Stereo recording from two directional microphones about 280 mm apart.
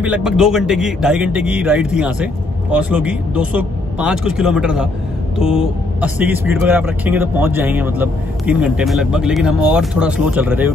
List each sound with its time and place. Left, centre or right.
0.0 s speech: centre